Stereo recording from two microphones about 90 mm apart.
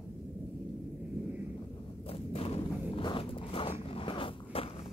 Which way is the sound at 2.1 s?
90° left.